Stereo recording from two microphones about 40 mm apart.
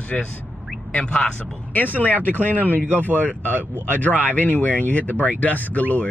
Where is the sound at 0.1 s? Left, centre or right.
Left.